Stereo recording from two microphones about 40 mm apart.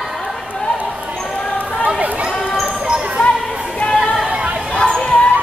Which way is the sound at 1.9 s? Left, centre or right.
Right.